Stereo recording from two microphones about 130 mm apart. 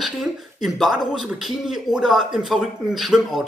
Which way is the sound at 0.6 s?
Centre (ahead or behind).